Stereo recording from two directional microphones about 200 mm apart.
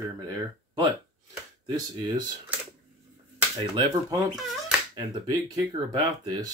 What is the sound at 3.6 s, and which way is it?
Speech, 20° right (ahead or behind).